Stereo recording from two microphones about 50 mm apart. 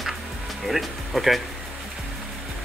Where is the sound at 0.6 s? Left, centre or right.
Centre.